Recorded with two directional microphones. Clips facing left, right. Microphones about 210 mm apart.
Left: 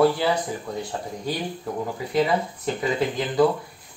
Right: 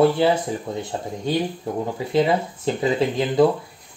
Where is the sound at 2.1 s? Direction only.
25° right (ahead or behind).